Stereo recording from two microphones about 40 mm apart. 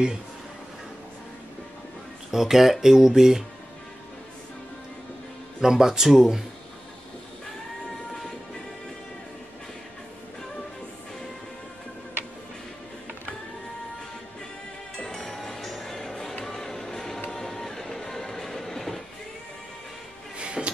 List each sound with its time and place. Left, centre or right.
2.3 s speech: centre
5.6 s speech: centre
15.0 s music: centre
20.3 s music: right